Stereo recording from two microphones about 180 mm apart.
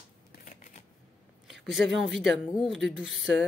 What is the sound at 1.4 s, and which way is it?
Speech, centre (ahead or behind).